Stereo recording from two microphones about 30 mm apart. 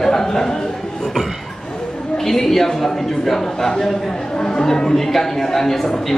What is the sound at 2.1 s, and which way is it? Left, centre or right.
A man's voice, centre.